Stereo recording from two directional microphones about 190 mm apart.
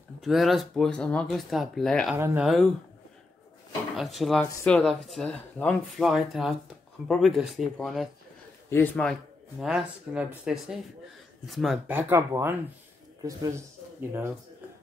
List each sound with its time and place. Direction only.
0.2 s speech: centre (ahead or behind)
2.1 s speech: 10° right (ahead or behind)
2.4 s speech: centre (ahead or behind)
3.9 s speech: centre (ahead or behind)
8.6 s speech: 10° left (ahead or behind)
9.6 s speech: 5° right (ahead or behind)
11.9 s speech: 10° right (ahead or behind)